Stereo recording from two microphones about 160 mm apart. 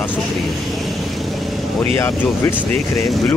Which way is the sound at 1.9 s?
15° left (ahead or behind).